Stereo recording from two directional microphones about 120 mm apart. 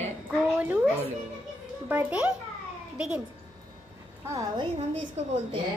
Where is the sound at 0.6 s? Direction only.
10° right (ahead or behind).